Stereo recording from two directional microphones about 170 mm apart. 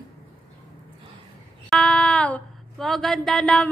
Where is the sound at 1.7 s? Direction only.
5° left (ahead or behind).